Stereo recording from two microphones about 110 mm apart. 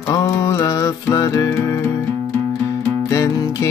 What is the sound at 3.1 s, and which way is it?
Music, 30° left (ahead or behind).